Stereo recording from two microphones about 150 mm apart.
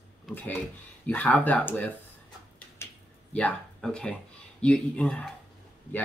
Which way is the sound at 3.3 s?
5° left (ahead or behind).